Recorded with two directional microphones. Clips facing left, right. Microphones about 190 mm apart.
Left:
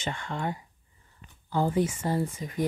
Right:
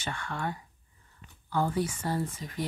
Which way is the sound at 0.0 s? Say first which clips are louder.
Left 2 dB; 20° left (ahead or behind).